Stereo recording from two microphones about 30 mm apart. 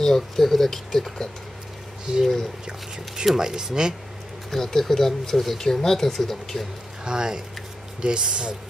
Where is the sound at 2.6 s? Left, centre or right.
Right.